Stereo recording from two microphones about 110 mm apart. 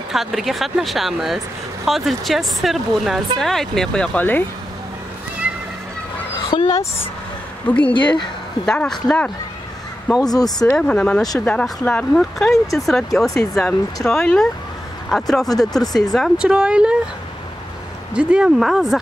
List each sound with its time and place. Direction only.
0.1 s speech: centre (ahead or behind); by 4.5 s 15° left (ahead or behind)
6.5 s speech: 45° left (ahead or behind)
7.6 s speech: 15° left (ahead or behind)
7.9 s speech: 45° left (ahead or behind)
8.6 s speech: 5° left (ahead or behind)
10.2 s speech: 35° left (ahead or behind)
10.7 s speech: 10° left (ahead or behind)
16.3 s speech: 5° right (ahead or behind)
18.1 s speech: 10° right (ahead or behind)